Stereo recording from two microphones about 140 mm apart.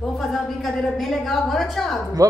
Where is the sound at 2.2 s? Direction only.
25° right (ahead or behind).